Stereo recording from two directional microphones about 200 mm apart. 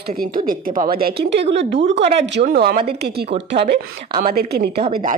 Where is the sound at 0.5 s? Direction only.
45° right (ahead or behind); by 1.9 s 65° right (ahead or behind).